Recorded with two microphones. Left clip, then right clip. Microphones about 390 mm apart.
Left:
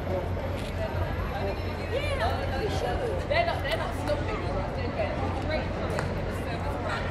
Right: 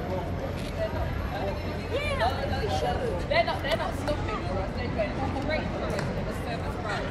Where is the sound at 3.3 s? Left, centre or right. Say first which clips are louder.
Right 2 dB; centre.